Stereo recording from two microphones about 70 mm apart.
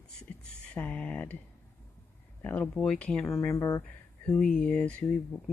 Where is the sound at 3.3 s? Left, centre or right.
Left.